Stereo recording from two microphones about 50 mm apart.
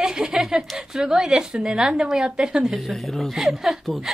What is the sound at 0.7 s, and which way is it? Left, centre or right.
A woman's voice, centre.